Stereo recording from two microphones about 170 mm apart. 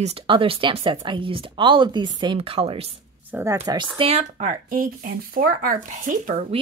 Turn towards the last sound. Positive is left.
turn(degrees=-50)  # may be behind; listen again after turning